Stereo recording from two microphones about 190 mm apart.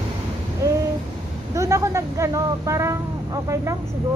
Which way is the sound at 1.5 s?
15° right (ahead or behind).